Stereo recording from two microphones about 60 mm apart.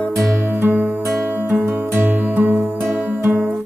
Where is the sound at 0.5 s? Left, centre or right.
Right.